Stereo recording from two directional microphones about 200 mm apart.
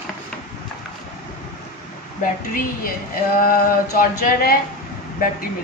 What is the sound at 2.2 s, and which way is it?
Speech, 45° left (ahead or behind).